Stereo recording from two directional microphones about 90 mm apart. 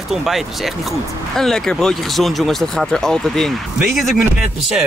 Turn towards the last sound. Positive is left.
turn(degrees=-10)  # may be behind; listen again after turning